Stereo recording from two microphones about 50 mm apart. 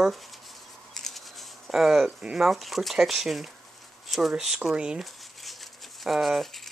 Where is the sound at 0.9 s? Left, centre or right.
Centre.